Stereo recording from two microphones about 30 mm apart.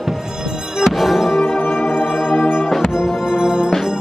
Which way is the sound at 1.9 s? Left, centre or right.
Left.